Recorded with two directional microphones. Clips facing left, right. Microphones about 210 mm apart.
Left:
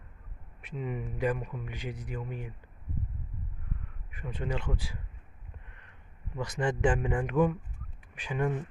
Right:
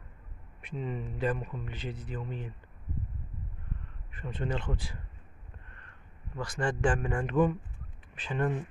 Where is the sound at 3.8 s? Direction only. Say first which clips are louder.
Right 1 dB; 10° left (ahead or behind).